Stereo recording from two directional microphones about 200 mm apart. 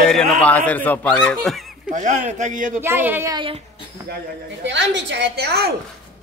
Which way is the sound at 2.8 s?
10° right (ahead or behind).